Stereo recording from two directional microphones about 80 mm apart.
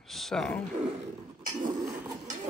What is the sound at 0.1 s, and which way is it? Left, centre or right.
Speech, centre.